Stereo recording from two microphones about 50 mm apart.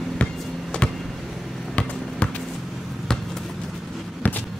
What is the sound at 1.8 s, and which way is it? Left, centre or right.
Basketball bounce, left.